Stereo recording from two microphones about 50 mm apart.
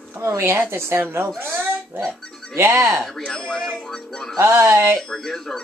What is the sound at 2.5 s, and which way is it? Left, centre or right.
Speech, right.